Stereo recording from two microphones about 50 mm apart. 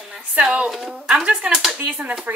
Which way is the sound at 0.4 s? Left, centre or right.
Right.